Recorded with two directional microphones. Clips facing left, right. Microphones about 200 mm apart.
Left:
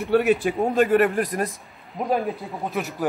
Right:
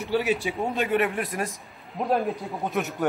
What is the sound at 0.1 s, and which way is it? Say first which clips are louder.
Speech: left 6 dB; 55° left (ahead or behind).